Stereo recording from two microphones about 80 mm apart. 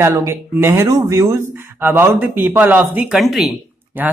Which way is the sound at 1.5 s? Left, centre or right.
Right.